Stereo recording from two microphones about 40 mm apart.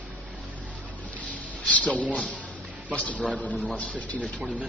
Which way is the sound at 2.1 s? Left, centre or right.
Left.